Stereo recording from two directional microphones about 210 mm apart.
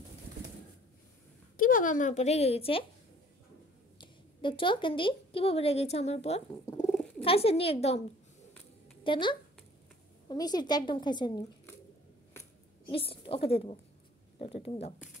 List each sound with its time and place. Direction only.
1.6 s speech: 40° left (ahead or behind)
4.0 s a woman's voice: 25° left (ahead or behind)
9.0 s speech: 25° left (ahead or behind)
12.9 s speech: 25° left (ahead or behind)